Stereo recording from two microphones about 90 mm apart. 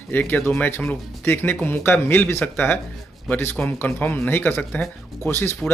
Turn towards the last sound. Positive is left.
turn(degrees=30)  # may be behind; listen again after turning